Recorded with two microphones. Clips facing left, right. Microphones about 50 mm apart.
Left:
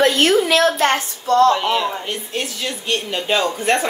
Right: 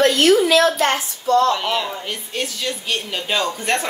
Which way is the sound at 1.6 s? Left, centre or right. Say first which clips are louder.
Left 3 dB; centre.